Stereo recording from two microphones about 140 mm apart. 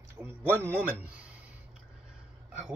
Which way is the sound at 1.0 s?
10° right (ahead or behind).